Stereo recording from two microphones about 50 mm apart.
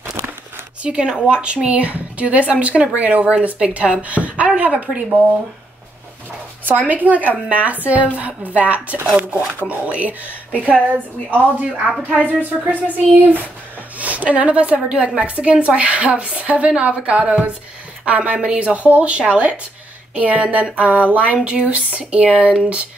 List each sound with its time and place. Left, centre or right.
0.8 s a woman's voice: right
6.9 s a woman's voice: right
22.5 s speech: centre